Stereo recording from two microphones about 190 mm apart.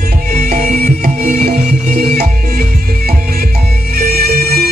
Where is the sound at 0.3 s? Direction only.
50° right (ahead or behind).